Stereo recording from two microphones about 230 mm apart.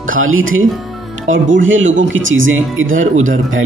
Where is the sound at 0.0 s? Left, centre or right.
Right.